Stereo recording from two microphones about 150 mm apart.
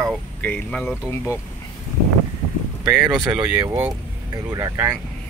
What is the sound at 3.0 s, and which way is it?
Speech, 5° right (ahead or behind).